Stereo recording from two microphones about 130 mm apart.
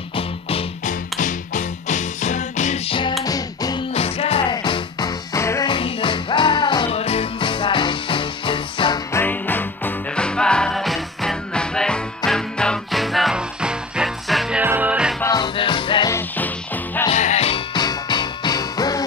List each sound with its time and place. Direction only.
0.1 s music: 45° left (ahead or behind)
1.2 s music: 70° left (ahead or behind)
2.9 s music: 35° left (ahead or behind)
3.9 s music: 50° left (ahead or behind); by 5.7 s 25° left (ahead or behind)
5.7 s music: 40° left (ahead or behind)
6.9 s music: 50° left (ahead or behind)
9.1 s music: 15° left (ahead or behind); by 14.6 s centre (ahead or behind)
14.6 s music: 15° right (ahead or behind)
15.3 s music: 40° left (ahead or behind)
16.1 s music: 15° left (ahead or behind)
17.1 s music: 60° left (ahead or behind)
17.7 s music: 35° left (ahead or behind)